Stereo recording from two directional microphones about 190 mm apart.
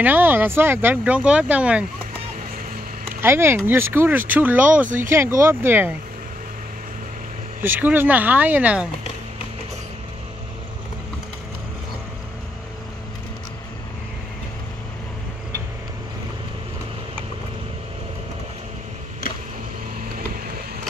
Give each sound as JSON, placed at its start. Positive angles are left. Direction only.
{"t": 0.0, "sound": "speech", "side_deg": -10}
{"t": 3.2, "sound": "speech", "side_deg": -10}
{"t": 4.8, "sound": "speech", "side_deg": -45}
{"t": 5.1, "sound": "speech", "side_deg": -15}
{"t": 7.6, "sound": "speech", "side_deg": -10}